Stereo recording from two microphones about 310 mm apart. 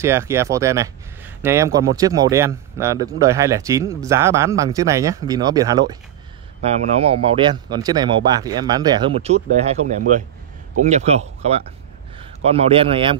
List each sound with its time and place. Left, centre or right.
0.0 s speech: centre